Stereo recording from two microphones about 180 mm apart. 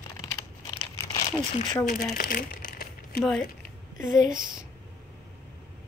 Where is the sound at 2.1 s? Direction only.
55° left (ahead or behind).